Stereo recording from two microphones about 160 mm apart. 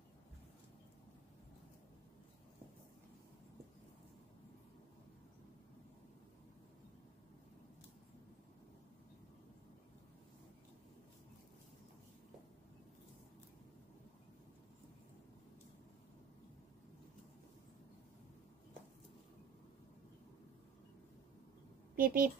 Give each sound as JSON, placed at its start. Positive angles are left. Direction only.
{"t": 21.9, "sound": "a woman's voice", "side_deg": -60}